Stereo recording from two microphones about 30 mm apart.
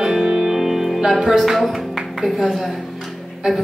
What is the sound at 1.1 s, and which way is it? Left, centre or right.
Speech, centre.